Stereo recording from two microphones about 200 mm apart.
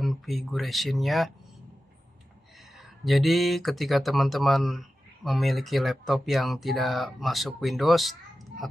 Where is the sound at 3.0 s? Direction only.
Centre (ahead or behind).